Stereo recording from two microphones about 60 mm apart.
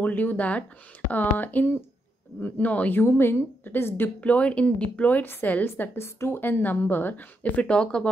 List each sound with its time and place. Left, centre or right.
0.0 s speech: left
3.1 s a woman's voice: left
4.2 s speech: left
5.2 s a woman's voice: left
5.9 s a woman's voice: left
7.6 s speech: centre